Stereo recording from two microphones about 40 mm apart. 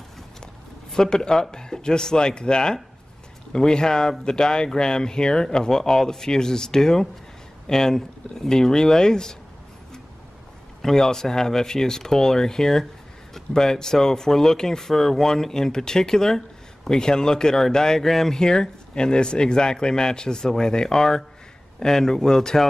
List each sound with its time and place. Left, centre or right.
0.9 s speech: centre
10.8 s speech: centre
18.4 s speech: centre